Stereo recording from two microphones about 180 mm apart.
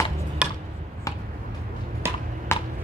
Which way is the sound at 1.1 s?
20° left (ahead or behind).